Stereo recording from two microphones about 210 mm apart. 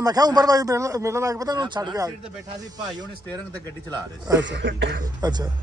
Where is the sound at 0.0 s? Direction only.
20° right (ahead or behind).